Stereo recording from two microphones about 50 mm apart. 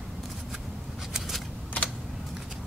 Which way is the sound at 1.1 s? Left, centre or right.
Centre.